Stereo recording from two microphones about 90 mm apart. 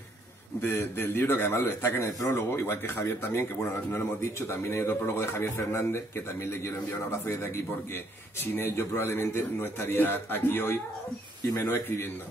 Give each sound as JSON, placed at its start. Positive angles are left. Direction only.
{"t": 0.6, "sound": "a man's voice", "side_deg": 25}